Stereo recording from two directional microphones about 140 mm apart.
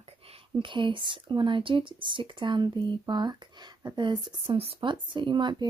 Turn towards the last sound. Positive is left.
turn(degrees=-35)  # may be behind; listen again after turning